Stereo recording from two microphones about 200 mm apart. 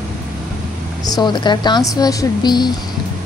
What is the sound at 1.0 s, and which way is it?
A woman's voice, 20° left (ahead or behind).